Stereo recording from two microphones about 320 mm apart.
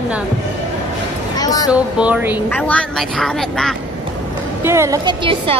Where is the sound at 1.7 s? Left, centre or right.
Centre.